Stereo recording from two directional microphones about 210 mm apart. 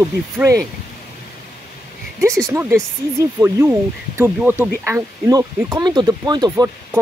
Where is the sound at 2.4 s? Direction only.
10° right (ahead or behind).